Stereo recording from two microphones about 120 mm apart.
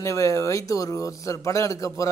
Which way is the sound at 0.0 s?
25° left (ahead or behind).